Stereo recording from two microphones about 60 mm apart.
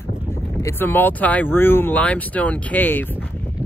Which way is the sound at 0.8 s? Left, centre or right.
Left.